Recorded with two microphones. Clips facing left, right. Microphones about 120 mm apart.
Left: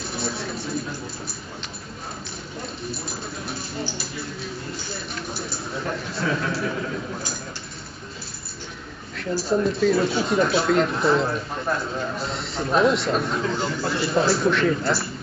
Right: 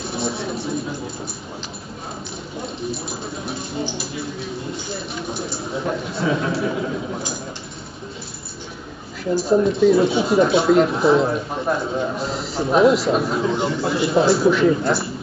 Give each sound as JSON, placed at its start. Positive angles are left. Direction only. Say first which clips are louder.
{"t": 0.0, "sound": "a sound", "louder": "right 4 dB", "side_deg": 0}
{"t": 2.6, "sound": "bird", "louder": "right 5 dB", "side_deg": 0}
{"t": 4.7, "sound": "a man's voice", "louder": "right 4 dB", "side_deg": 0}
{"t": 9.7, "sound": "a man's voice", "louder": "right 5 dB", "side_deg": 0}
{"t": 12.2, "sound": "speech", "louder": "right 4 dB", "side_deg": 0}
{"t": 14.7, "sound": "speech", "louder": "right 4 dB", "side_deg": -20}